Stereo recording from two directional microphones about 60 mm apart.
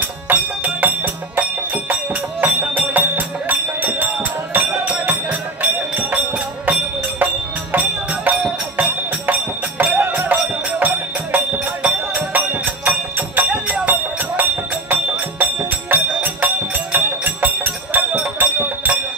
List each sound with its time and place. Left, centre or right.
0.3 s music: right
7.7 s music: right
9.9 s music: right
10.2 s music: right